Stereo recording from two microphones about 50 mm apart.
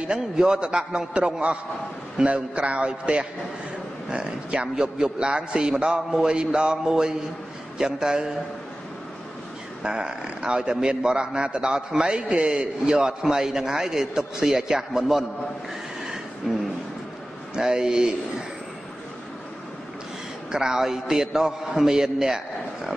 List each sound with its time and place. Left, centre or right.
0.0 s a man's voice: centre
9.8 s a man's voice: centre
17.6 s a man's voice: centre
20.5 s a man's voice: centre